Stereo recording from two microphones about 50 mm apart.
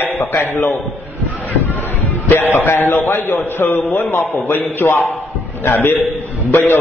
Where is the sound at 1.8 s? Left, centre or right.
Left.